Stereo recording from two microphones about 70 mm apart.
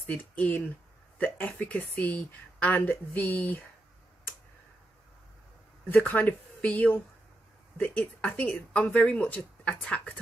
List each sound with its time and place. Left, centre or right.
0.0 s speech: left
5.9 s speech: left